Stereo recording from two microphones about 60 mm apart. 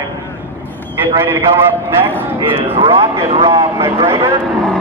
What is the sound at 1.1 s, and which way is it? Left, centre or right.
Speech, right.